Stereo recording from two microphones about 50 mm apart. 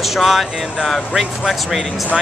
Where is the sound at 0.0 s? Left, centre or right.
Centre.